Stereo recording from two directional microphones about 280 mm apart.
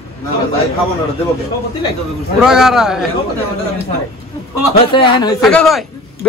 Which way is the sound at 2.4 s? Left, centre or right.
Centre.